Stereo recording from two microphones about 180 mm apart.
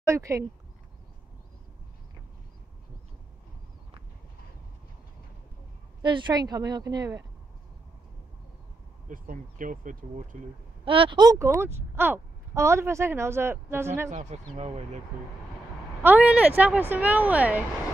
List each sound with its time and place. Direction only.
0.0 s speech: 15° right (ahead or behind)
6.0 s a woman's voice: 25° right (ahead or behind)
9.1 s speech: 50° right (ahead or behind)
10.9 s speech: 30° right (ahead or behind)
14.1 s speech: 35° right (ahead or behind)
16.0 s speech: 10° right (ahead or behind)